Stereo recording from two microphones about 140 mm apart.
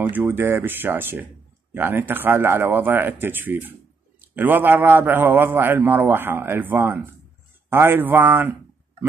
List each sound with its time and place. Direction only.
0.1 s speech: 15° right (ahead or behind)